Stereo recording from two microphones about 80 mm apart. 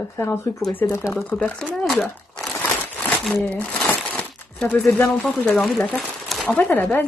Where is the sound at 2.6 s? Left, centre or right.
Left.